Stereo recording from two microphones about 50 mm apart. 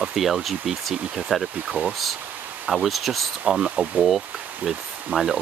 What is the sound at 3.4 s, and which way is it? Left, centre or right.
Speech, centre.